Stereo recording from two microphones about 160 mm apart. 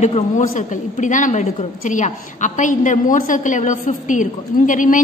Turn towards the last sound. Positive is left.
turn(degrees=55)  # may be behind; listen again after turning